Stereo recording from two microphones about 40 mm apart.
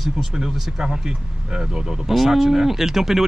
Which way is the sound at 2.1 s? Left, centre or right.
Centre.